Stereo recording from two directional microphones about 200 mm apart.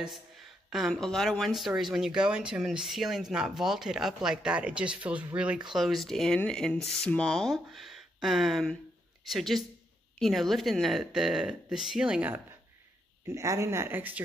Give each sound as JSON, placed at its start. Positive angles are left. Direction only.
{"t": 0.7, "sound": "speech", "side_deg": 0}